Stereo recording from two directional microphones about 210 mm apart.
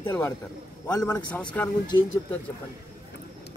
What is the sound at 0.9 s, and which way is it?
Speech, 10° left (ahead or behind).